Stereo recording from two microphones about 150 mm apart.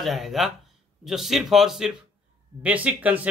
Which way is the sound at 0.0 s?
Centre (ahead or behind).